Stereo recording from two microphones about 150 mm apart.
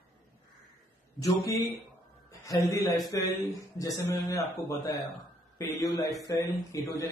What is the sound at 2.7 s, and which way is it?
Speech, 20° left (ahead or behind).